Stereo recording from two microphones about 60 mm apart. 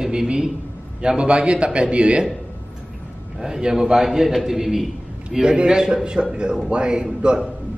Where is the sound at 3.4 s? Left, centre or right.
Centre.